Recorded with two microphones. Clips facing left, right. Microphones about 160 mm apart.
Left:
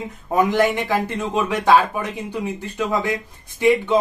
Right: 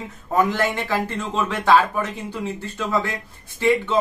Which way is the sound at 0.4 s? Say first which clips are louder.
Left 3 dB; 15° left (ahead or behind).